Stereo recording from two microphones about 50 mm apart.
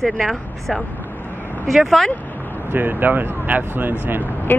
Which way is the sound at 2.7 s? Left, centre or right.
Right.